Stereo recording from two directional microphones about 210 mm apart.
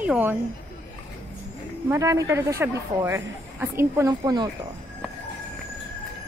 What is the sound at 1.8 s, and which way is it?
Speech, 15° right (ahead or behind).